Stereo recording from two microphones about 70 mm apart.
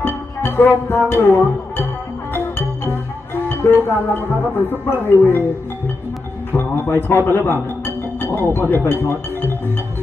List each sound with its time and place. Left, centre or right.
0.0 s music: left
3.6 s speech: left
6.5 s speech: left
7.8 s music: left